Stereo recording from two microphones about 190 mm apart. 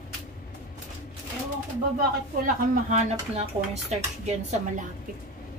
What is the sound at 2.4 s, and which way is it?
Speech, 40° right (ahead or behind).